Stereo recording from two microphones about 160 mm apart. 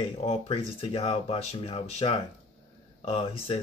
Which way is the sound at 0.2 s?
35° left (ahead or behind).